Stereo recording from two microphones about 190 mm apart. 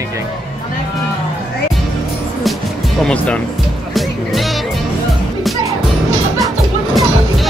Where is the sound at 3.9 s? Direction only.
Centre (ahead or behind).